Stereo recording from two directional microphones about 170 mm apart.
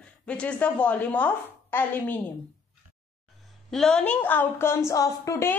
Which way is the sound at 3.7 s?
5° left (ahead or behind).